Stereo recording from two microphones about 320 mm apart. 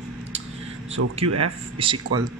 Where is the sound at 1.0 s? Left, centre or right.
Right.